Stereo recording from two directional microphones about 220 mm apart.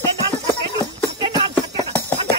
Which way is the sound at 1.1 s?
20° right (ahead or behind).